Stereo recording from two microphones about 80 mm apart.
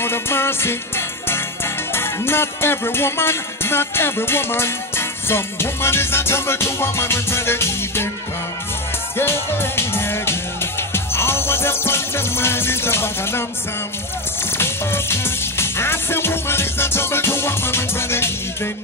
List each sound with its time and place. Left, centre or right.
0.0 s music: left
9.2 s music: left
14.6 s music: left